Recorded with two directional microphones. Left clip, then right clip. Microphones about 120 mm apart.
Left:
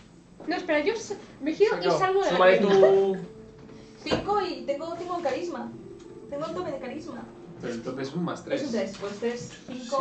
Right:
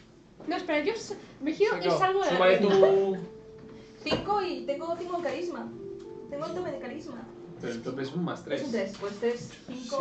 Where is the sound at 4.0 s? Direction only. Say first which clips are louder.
Left 2 dB; 25° left (ahead or behind).